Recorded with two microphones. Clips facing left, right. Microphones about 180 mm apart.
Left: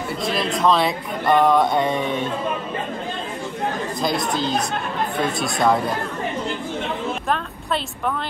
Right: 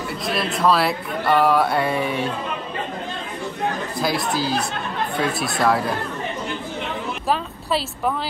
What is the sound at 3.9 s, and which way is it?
Speech, 5° right (ahead or behind).